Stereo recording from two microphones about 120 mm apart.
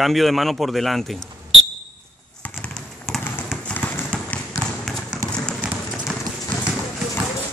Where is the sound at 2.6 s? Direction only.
5° left (ahead or behind).